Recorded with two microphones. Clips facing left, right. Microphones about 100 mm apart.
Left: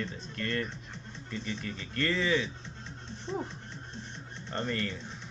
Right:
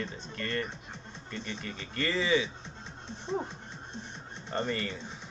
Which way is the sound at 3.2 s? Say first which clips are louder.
Right 2 dB; 15° right (ahead or behind).